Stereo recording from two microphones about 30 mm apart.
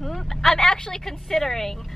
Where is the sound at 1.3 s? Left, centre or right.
Centre.